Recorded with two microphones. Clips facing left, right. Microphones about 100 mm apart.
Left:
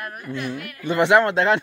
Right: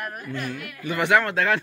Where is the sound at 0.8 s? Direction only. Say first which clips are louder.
Left 4 dB; 25° left (ahead or behind).